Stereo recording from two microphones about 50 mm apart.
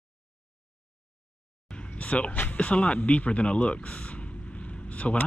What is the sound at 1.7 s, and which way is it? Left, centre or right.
Speech, left.